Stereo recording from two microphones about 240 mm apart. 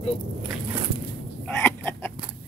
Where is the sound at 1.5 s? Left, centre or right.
Centre.